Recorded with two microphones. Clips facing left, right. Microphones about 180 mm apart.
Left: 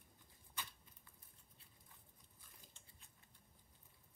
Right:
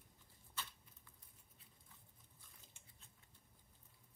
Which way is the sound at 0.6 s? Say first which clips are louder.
Even; 10° left (ahead or behind).